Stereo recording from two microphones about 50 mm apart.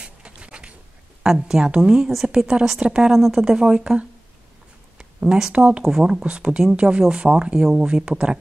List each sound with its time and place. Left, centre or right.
0.0 s a sound: right
1.2 s speech: centre
3.1 s speech: centre
4.9 s a sound: centre
5.5 s speech: right
5.9 s speech: centre
6.2 s speech: right